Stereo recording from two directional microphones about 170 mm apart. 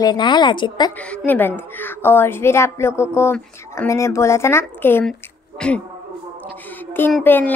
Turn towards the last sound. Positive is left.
turn(degrees=10)  # may be behind; listen again after turning